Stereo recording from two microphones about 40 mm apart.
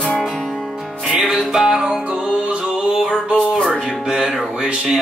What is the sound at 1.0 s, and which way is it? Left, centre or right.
Music, centre.